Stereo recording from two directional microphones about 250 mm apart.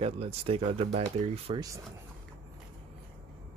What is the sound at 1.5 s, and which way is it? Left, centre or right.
Speech, centre.